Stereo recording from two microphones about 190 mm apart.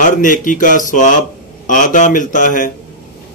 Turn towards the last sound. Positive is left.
turn(degrees=45)  # may be behind; listen again after turning